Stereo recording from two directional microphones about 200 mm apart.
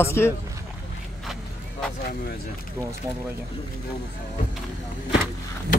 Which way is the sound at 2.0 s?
50° left (ahead or behind).